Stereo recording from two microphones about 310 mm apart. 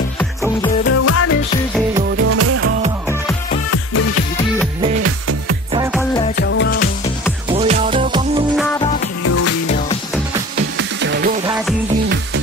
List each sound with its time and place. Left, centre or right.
0.8 s music: left
2.2 s music: right
6.3 s music: left
7.4 s music: centre
9.2 s music: left
10.5 s music: right